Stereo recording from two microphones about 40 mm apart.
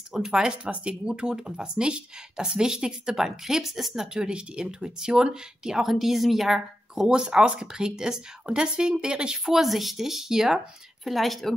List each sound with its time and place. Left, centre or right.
0.1 s speech: centre
7.1 s a woman's voice: right
9.4 s speech: centre
11.1 s speech: centre